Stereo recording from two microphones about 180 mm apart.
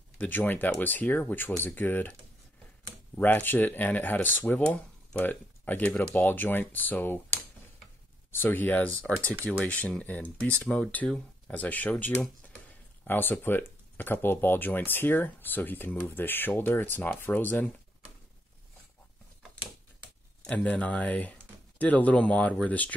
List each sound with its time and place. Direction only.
0.2 s speech: 10° left (ahead or behind)
3.2 s speech: 10° left (ahead or behind)
8.3 s speech: 10° left (ahead or behind)
20.4 s speech: 5° left (ahead or behind)